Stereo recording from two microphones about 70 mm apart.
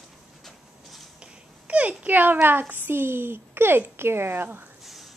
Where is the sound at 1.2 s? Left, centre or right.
Centre.